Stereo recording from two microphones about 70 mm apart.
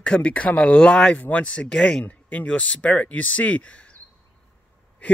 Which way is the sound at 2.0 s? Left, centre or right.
Left.